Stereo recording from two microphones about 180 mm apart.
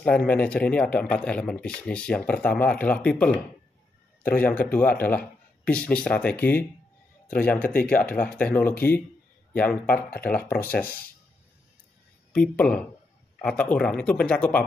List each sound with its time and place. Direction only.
0.0 s speech: 5° left (ahead or behind)
12.3 s speech: 5° left (ahead or behind)